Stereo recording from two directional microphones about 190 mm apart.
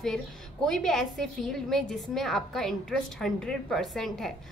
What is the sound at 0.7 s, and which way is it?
A woman's voice, centre (ahead or behind).